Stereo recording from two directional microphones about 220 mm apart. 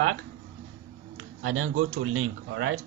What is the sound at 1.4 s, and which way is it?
Speech, 70° right (ahead or behind).